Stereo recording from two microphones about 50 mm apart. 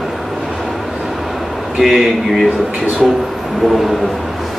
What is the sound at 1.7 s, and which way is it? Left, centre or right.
Speech, centre.